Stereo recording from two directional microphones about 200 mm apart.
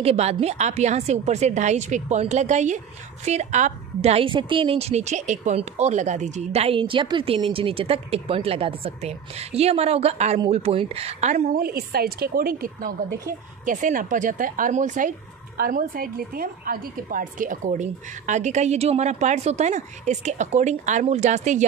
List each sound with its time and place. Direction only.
0.0 s speech: 30° right (ahead or behind)
11.6 s a woman's voice: 50° right (ahead or behind)